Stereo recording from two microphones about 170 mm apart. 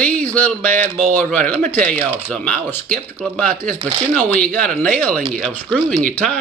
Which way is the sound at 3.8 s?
30° right (ahead or behind).